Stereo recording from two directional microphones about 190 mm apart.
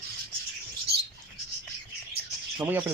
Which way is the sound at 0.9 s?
55° right (ahead or behind).